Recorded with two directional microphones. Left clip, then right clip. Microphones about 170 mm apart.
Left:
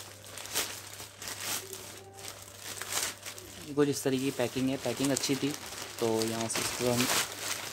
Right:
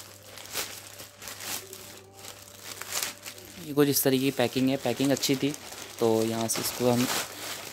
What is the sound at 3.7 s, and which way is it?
Speech, 45° right (ahead or behind).